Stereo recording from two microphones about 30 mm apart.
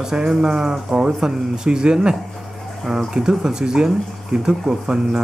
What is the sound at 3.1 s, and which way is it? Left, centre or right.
Speech, centre.